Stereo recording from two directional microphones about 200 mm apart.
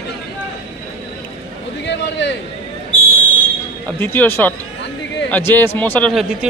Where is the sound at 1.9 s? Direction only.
60° left (ahead or behind).